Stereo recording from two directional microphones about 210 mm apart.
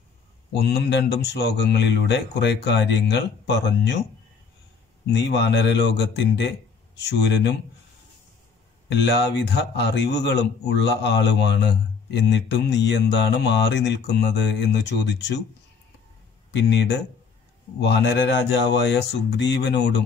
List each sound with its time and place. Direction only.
0.6 s a man's voice: 50° left (ahead or behind)
5.1 s a man's voice: 55° left (ahead or behind)
8.8 s a man's voice: 55° left (ahead or behind)
16.5 s a man's voice: 55° left (ahead or behind)